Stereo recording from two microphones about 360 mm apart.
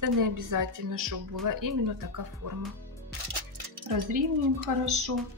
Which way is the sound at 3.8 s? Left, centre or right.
Right.